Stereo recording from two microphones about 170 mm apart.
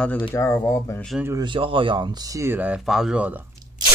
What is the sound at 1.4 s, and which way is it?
Speech, 30° right (ahead or behind).